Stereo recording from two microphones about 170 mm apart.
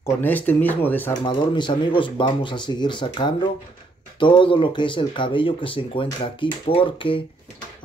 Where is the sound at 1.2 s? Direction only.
25° left (ahead or behind).